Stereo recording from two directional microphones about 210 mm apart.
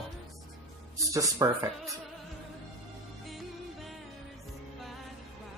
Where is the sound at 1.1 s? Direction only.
15° right (ahead or behind).